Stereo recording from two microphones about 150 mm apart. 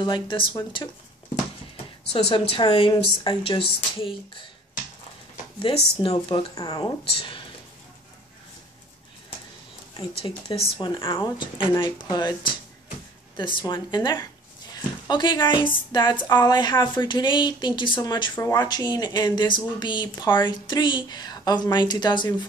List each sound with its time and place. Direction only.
0.0 s speech: 30° left (ahead or behind)
2.1 s speech: 40° left (ahead or behind)
5.9 s speech: 35° left (ahead or behind)
9.9 s speech: 35° left (ahead or behind)
14.7 s a sound: 30° left (ahead or behind)
15.4 s speech: 30° left (ahead or behind)